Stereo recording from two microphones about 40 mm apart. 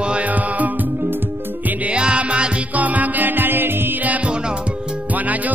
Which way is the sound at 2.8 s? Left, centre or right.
Right.